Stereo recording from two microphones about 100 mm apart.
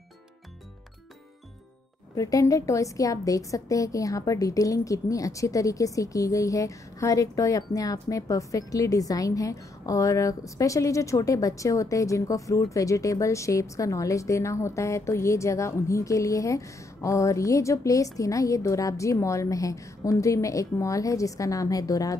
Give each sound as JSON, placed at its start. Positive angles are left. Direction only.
{"t": 2.1, "sound": "a woman's voice", "side_deg": 35}